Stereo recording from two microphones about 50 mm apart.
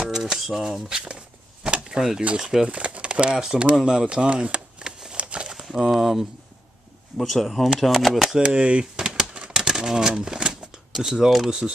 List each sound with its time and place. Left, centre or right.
0.0 s speech: centre
1.6 s a sound: centre
2.2 s speech: centre
4.7 s a sound: centre
5.1 s crumpling: right
5.5 s speech: centre
8.4 s speech: right
9.1 s typewriter: centre